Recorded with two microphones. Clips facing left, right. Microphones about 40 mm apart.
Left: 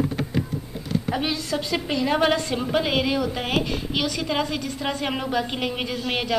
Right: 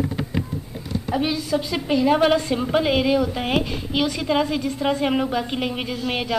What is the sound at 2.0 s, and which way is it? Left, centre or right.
A woman's voice, centre.